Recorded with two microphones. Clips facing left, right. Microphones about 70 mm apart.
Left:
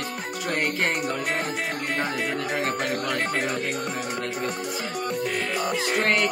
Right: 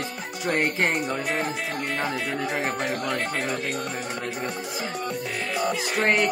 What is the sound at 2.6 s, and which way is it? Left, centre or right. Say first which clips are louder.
Speech: even; centre.